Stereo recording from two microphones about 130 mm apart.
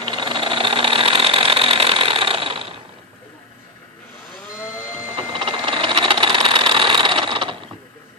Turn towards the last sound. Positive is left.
turn(degrees=-40)  # may be behind; listen again after turning